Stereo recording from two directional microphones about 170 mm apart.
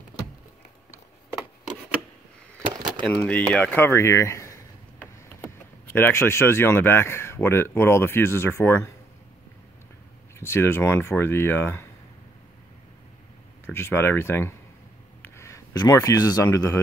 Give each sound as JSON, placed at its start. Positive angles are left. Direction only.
{"t": 3.2, "sound": "speech", "side_deg": 10}
{"t": 10.4, "sound": "speech", "side_deg": 15}
{"t": 13.7, "sound": "speech", "side_deg": 15}